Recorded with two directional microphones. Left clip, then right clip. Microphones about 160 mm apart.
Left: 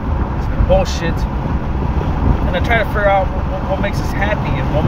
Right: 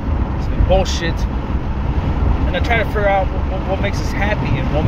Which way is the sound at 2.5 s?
10° left (ahead or behind).